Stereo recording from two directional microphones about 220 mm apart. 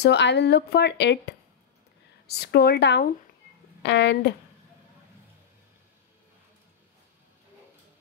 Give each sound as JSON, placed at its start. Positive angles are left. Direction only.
{"t": 0.0, "sound": "speech", "side_deg": 50}
{"t": 2.2, "sound": "speech", "side_deg": 45}